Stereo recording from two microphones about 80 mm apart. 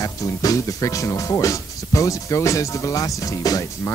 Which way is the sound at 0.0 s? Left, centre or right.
Left.